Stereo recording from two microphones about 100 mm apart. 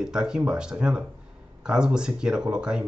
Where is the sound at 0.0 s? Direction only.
5° right (ahead or behind).